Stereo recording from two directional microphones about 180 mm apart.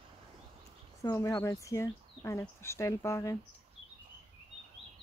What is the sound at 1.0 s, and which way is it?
Speech, 15° left (ahead or behind).